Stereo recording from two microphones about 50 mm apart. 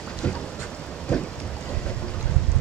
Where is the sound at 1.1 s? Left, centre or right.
Centre.